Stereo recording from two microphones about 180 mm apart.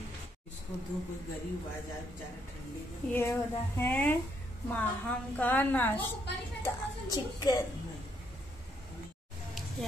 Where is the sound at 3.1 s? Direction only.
15° left (ahead or behind).